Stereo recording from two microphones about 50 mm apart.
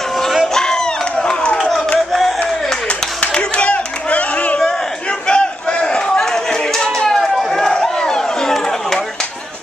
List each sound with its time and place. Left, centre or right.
1.2 s clapping: left
3.2 s clapping: left
5.3 s crowd: centre
7.7 s a sound: centre